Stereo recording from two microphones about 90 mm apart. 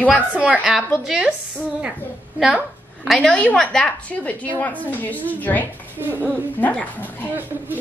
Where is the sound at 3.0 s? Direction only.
5° left (ahead or behind); by 5.7 s 20° left (ahead or behind).